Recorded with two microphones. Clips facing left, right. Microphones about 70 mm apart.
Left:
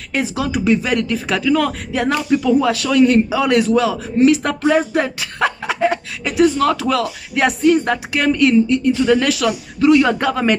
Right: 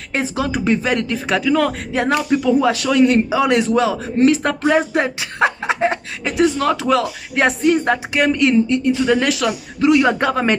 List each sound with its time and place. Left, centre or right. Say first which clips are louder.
0.1 s speech: left 1 dB; right